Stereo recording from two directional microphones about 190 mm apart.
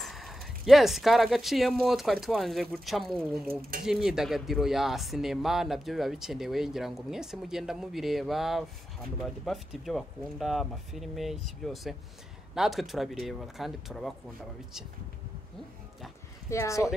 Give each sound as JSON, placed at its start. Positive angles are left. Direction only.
{"t": 0.0, "sound": "speech", "side_deg": 0}
{"t": 16.4, "sound": "speech", "side_deg": 15}